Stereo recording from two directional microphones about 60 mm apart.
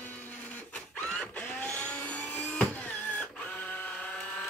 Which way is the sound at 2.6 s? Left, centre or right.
Left.